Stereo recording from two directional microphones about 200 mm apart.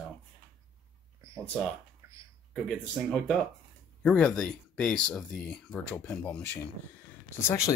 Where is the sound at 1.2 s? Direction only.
15° right (ahead or behind).